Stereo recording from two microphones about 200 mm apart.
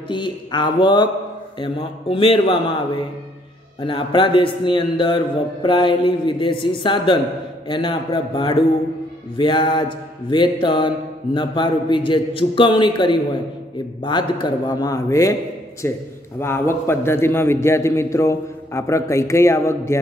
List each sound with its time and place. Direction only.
0.1 s a man's voice: 25° left (ahead or behind)
3.8 s a man's voice: 25° left (ahead or behind)